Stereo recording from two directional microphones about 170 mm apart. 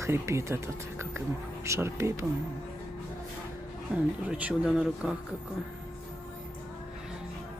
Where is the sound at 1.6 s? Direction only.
15° right (ahead or behind).